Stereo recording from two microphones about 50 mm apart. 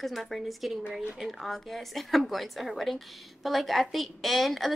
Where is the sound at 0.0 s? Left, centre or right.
Centre.